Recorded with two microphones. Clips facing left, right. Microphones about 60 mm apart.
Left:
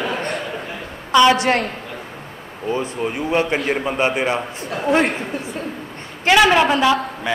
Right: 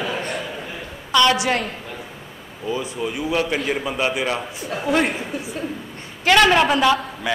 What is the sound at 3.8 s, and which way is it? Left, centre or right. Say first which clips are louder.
Speech: left 3 dB; left.